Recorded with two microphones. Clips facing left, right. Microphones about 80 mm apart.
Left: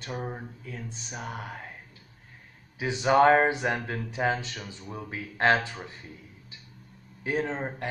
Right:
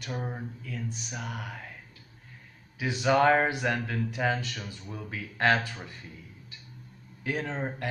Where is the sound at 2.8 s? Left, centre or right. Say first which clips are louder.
Left 3 dB; left.